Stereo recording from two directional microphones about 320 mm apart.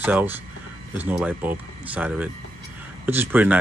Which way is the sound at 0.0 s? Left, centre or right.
Centre.